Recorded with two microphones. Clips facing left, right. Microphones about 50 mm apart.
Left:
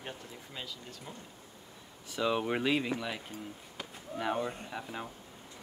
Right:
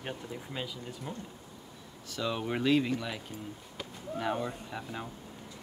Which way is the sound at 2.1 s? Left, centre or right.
Centre.